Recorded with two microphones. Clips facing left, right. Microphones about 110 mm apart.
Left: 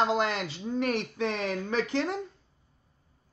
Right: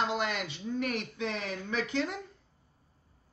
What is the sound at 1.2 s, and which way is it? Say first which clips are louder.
Speech: left 6 dB; 60° left (ahead or behind).